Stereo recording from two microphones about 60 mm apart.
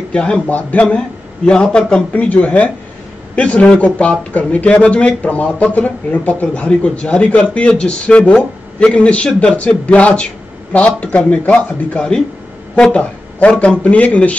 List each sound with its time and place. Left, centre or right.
0.1 s a man's voice: centre
0.8 s a man's voice: centre